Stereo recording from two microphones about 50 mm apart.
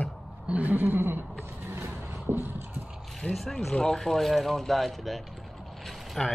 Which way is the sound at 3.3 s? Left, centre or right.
Centre.